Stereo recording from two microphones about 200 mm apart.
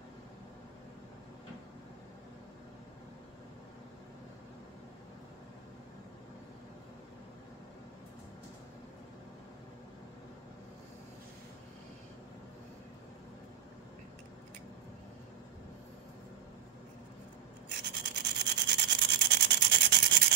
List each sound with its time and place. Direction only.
17.7 s rub: 55° right (ahead or behind)